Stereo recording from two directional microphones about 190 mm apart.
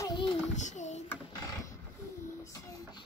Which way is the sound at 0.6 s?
40° left (ahead or behind).